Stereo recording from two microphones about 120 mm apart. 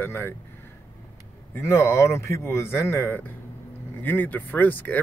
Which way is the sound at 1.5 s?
20° left (ahead or behind).